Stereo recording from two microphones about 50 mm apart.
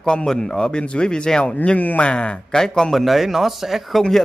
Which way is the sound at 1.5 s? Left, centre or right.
Left.